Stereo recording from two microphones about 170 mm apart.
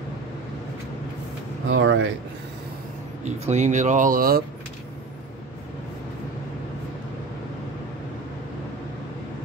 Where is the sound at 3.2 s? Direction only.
45° right (ahead or behind).